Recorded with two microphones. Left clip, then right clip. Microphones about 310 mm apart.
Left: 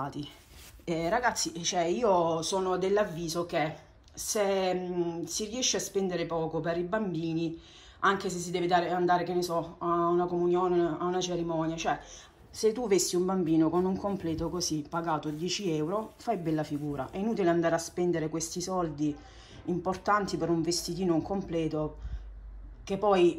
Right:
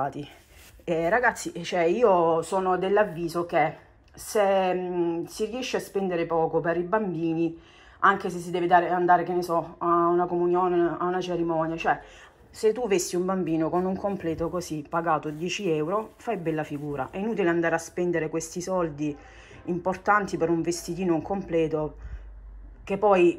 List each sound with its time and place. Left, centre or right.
0.0 s a woman's voice: centre
12.6 s speech: centre
14.6 s a woman's voice: centre
22.8 s speech: centre